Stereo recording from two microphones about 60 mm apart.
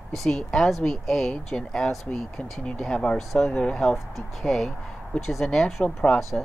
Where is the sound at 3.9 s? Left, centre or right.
Centre.